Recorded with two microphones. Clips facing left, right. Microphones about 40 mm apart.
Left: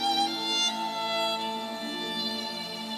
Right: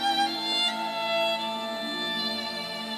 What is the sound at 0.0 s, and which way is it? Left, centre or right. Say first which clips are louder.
Music: right 1 dB; right.